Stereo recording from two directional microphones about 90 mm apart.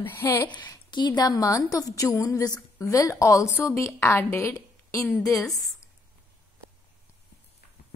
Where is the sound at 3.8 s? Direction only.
35° left (ahead or behind).